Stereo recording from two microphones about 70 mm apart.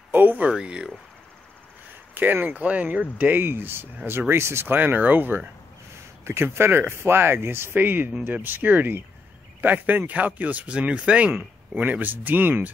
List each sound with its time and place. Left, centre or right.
0.1 s a sound: right
0.5 s speech: centre
2.1 s speech: right
4.7 s speech: right